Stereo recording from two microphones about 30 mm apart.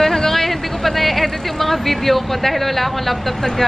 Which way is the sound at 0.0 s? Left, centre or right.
Centre.